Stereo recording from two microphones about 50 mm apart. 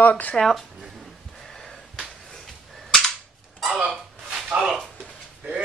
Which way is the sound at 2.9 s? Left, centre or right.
Centre.